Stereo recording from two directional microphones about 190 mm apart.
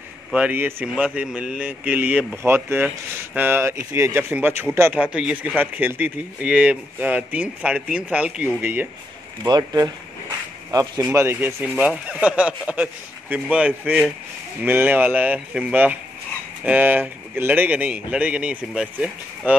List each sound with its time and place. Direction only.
0.3 s a man's voice: 10° right (ahead or behind)
9.4 s speech: 20° right (ahead or behind); by 19.5 s 5° right (ahead or behind)